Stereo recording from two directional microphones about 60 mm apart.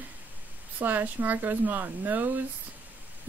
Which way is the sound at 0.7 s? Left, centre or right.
Right.